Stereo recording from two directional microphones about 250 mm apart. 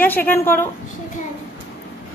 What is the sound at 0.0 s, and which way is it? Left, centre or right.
Speech, centre.